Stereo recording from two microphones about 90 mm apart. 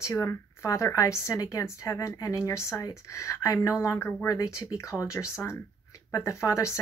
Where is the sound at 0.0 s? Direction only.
35° left (ahead or behind).